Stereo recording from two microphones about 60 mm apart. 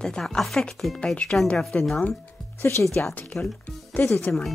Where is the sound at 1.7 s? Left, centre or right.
Left.